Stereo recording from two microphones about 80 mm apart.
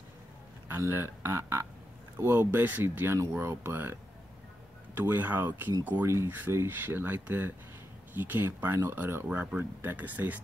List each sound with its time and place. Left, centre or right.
0.7 s a man's voice: right
4.9 s speech: right
6.0 s a man's voice: right